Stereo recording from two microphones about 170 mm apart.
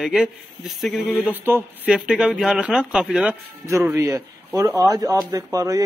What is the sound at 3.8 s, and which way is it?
Speech, 15° right (ahead or behind).